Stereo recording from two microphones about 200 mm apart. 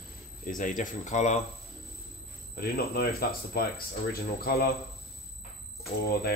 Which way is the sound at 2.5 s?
50° left (ahead or behind).